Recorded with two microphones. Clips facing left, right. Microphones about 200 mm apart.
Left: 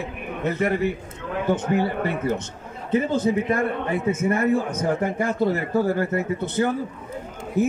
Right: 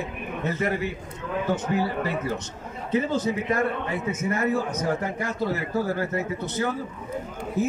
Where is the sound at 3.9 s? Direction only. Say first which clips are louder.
Left 5 dB; 55° left (ahead or behind).